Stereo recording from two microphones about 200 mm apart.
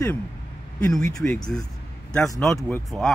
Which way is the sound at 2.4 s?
Centre (ahead or behind).